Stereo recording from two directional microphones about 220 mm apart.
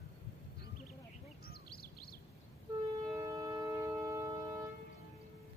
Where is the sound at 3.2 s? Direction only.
15° right (ahead or behind).